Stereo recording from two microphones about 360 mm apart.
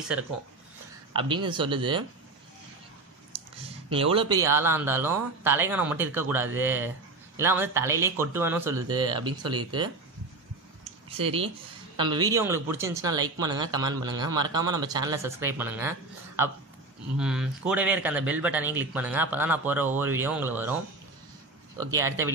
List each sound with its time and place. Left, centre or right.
1.1 s speech: centre
3.9 s speech: centre
10.8 s clicking: centre
12.0 s speech: centre
17.2 s speech: centre
21.7 s speech: centre